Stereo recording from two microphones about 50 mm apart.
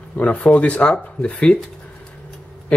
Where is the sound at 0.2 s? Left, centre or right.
Left.